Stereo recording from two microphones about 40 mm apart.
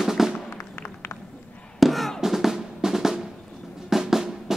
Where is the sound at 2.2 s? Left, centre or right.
Centre.